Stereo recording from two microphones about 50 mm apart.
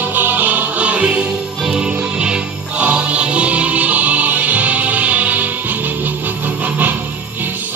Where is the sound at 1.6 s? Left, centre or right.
Centre.